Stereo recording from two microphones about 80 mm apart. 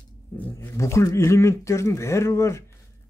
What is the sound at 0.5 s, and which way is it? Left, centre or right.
Speech, left.